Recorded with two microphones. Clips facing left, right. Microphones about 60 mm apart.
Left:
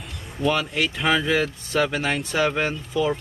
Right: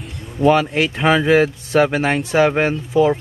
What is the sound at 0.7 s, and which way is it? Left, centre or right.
Speech, right.